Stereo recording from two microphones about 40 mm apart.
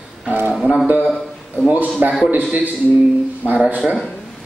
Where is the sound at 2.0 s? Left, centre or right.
Right.